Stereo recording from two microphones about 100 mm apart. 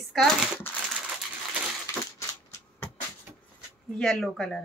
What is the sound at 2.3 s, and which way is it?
Shuffling cards, 30° left (ahead or behind).